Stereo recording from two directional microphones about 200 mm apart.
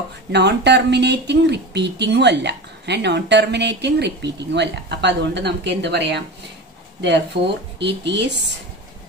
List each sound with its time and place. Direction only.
0.3 s speech: 60° right (ahead or behind)